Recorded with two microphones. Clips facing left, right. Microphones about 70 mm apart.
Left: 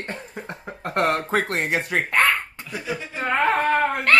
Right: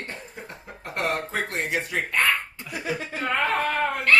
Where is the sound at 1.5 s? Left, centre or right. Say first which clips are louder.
Left 4 dB; left.